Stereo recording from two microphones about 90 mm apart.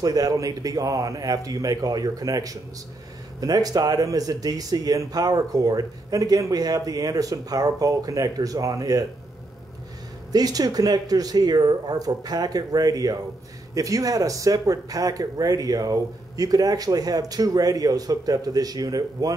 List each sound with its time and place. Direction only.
0.0 s speech: 45° right (ahead or behind)
10.3 s speech: 45° right (ahead or behind)